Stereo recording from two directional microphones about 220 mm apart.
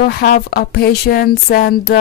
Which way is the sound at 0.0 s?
45° left (ahead or behind).